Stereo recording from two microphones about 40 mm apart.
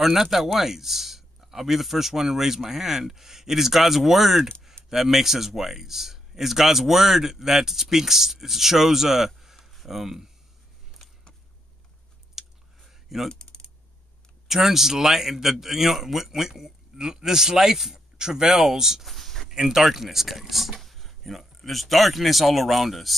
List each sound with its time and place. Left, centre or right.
0.0 s speech: centre
9.6 s a sound: centre
9.8 s speech: centre
12.4 s chewing: centre
12.8 s computer keyboard: centre
13.3 s typing: left
14.5 s speech: centre
19.0 s a sound: centre
19.5 s speech: centre